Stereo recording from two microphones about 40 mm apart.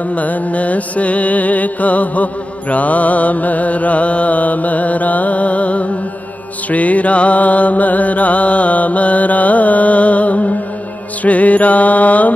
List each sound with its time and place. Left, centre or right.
0.1 s mantra: left